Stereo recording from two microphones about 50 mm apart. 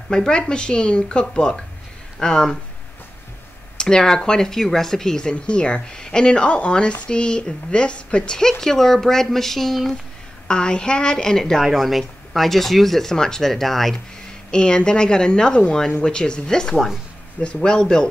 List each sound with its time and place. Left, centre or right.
0.1 s speech: centre
3.7 s speech: centre
10.5 s speech: centre
11.5 s speech: centre
14.5 s speech: centre
16.7 s speech: centre
17.4 s speech: left